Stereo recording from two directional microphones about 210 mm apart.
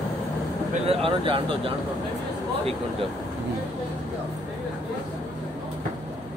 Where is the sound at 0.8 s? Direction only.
25° right (ahead or behind).